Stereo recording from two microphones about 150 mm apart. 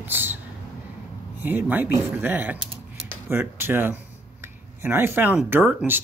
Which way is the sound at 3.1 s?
15° right (ahead or behind).